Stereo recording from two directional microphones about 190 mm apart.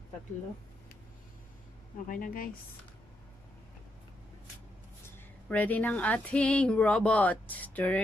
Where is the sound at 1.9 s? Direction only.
45° left (ahead or behind).